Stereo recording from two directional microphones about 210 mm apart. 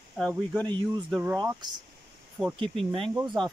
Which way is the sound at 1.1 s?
5° right (ahead or behind).